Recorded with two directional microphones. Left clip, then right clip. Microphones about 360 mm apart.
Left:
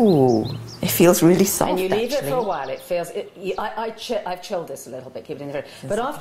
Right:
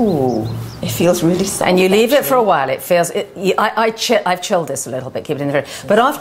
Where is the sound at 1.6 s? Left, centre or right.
Right.